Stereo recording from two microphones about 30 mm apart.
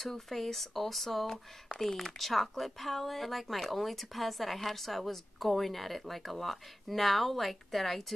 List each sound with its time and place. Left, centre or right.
0.0 s speech: centre